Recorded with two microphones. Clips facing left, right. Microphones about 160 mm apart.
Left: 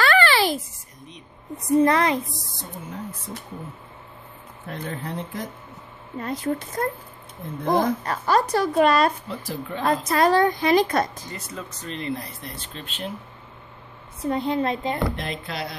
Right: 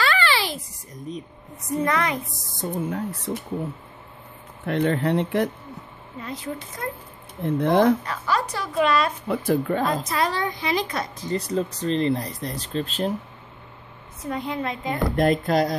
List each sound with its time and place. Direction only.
0.0 s a sound: 55° left (ahead or behind)
1.9 s a woman's voice: 35° left (ahead or behind)
2.5 s speech: 65° right (ahead or behind)
4.6 s speech: 70° right (ahead or behind)
6.1 s speech: 45° left (ahead or behind)
7.4 s speech: 75° right (ahead or behind)
8.0 s speech: 45° left (ahead or behind)
9.3 s speech: 55° right (ahead or behind)
10.0 s speech: 50° left (ahead or behind)
11.3 s speech: 35° right (ahead or behind)
14.2 s a woman's voice: 30° left (ahead or behind)
15.1 s speech: 45° right (ahead or behind)